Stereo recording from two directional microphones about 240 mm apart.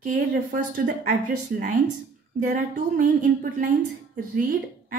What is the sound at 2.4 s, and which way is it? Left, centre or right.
A woman's voice, right.